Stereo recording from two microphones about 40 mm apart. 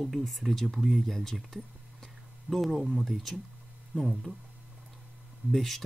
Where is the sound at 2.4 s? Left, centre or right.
Centre.